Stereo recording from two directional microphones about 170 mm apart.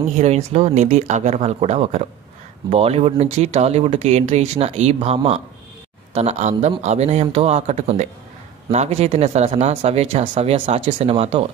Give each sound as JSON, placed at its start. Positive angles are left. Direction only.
{"t": 0.2, "sound": "speech", "side_deg": -40}